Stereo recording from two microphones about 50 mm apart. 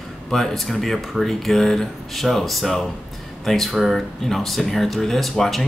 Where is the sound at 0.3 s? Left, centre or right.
Centre.